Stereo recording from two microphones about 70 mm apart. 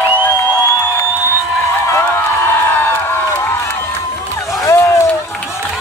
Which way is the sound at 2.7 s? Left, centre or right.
Left.